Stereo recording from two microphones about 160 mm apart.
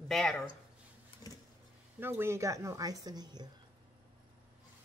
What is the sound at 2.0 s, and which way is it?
A woman's voice, 15° right (ahead or behind).